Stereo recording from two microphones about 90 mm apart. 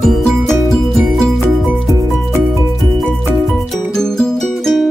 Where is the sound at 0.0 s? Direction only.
Centre (ahead or behind).